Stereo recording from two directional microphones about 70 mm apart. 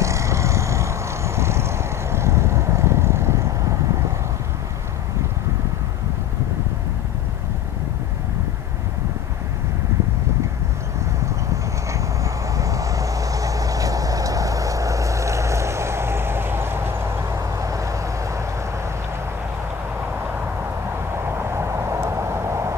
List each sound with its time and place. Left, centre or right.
0.0 s vehicle: right
11.9 s vehicle: right
17.6 s vehicle: right
20.9 s vehicle: right